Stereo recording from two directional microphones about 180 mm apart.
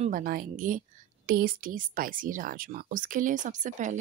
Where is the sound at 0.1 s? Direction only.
55° right (ahead or behind).